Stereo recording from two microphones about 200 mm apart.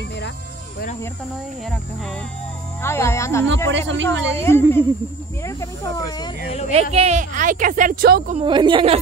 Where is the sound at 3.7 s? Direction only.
65° right (ahead or behind).